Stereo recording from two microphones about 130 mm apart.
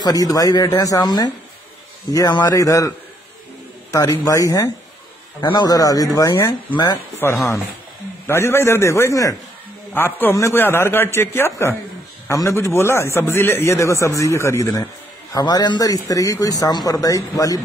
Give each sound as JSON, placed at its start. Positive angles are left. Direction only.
{"t": 0.0, "sound": "a man's voice", "side_deg": 30}
{"t": 3.9, "sound": "a man's voice", "side_deg": 25}
{"t": 6.7, "sound": "speech", "side_deg": 35}
{"t": 7.2, "sound": "a man's voice", "side_deg": 20}